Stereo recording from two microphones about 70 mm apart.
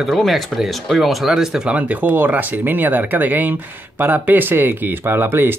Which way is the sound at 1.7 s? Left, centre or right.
Right.